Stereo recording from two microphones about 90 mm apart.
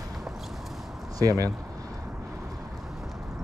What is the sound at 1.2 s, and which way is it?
Speech, 40° right (ahead or behind).